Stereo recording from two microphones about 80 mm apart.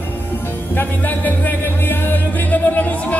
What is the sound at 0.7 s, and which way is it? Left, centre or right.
Music, left.